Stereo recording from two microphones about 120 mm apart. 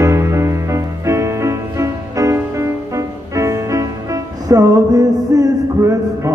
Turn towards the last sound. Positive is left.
turn(degrees=-25)  # may be behind; listen again after turning